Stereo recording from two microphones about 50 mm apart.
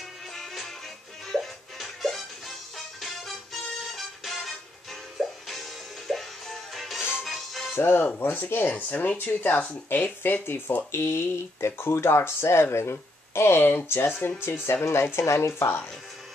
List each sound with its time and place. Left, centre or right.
1.3 s music: centre
7.0 s music: centre
7.2 s music: centre
7.7 s speech: left
8.2 s speech: left
10.9 s speech: left
15.2 s speech: left